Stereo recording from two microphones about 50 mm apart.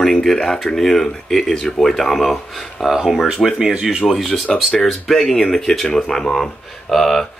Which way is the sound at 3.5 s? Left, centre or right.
Centre.